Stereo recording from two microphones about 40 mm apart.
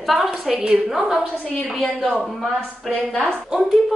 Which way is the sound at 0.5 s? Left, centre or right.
Centre.